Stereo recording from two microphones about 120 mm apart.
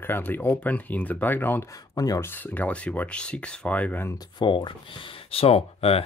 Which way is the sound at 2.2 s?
15° left (ahead or behind).